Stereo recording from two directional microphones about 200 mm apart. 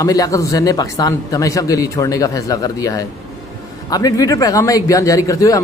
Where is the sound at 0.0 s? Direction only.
15° left (ahead or behind).